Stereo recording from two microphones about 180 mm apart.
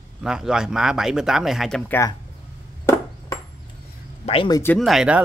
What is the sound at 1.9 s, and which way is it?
Speech, 15° left (ahead or behind).